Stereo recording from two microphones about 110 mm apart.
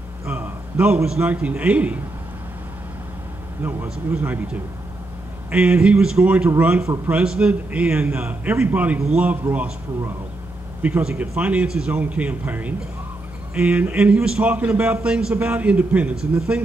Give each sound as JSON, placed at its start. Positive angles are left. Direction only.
{"t": 0.2, "sound": "a man's voice", "side_deg": -20}
{"t": 3.6, "sound": "a man's voice", "side_deg": -20}